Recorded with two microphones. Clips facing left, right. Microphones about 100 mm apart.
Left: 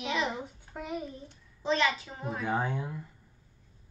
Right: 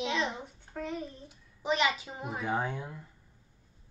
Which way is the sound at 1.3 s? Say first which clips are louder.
Left 1 dB; 15° right (ahead or behind).